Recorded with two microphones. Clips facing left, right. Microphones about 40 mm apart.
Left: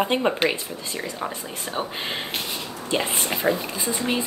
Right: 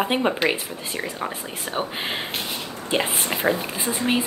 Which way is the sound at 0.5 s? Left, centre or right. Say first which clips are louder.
Right 1 dB; right.